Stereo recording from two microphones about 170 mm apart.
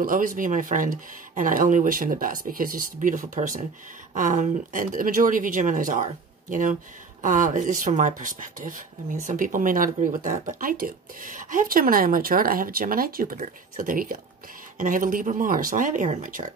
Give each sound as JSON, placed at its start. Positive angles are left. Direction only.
{"t": 0.0, "sound": "speech", "side_deg": -55}